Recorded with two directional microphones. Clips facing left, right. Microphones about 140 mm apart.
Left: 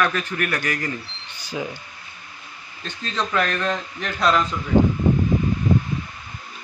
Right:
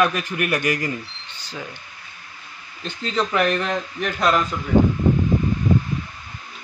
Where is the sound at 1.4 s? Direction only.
10° left (ahead or behind).